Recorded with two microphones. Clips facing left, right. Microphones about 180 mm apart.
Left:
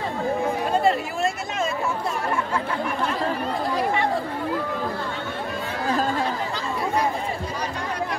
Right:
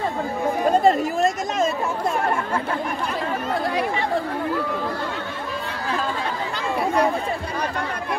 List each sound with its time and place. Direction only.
0.7 s chatter: 40° right (ahead or behind)